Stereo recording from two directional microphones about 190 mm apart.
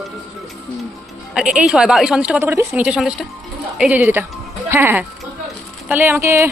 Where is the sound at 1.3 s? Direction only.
5° right (ahead or behind).